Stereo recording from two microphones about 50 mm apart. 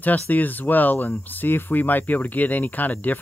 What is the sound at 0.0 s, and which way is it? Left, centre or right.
Speech, left.